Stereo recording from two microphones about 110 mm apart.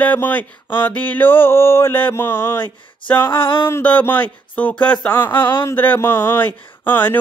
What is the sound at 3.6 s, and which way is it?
Speech, 15° left (ahead or behind).